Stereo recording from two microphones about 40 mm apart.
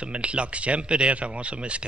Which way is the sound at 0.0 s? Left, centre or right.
Right.